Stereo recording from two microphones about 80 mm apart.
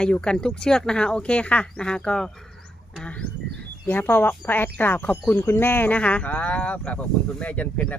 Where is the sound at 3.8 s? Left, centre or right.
Left.